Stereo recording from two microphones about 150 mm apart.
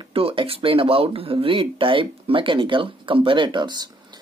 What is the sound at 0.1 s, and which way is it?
Speech, 40° right (ahead or behind).